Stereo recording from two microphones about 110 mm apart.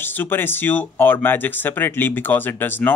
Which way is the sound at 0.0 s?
15° left (ahead or behind).